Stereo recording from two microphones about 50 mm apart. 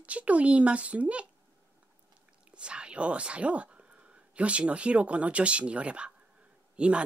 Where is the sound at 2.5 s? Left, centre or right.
Right.